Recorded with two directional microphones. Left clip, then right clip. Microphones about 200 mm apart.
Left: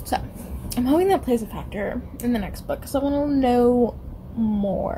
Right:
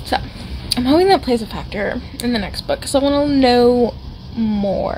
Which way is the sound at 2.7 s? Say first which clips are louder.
Right 8 dB; 20° right (ahead or behind).